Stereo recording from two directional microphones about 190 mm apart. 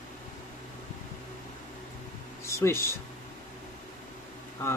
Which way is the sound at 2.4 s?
15° left (ahead or behind).